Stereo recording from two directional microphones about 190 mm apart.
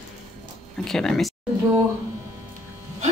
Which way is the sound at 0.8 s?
5° left (ahead or behind).